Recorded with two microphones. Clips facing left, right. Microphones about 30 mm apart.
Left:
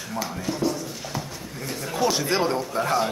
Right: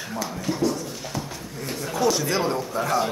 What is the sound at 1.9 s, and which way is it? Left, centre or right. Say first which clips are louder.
Speech: right 1 dB; left.